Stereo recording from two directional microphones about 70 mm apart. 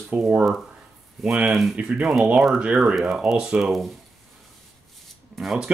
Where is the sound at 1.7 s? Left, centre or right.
Centre.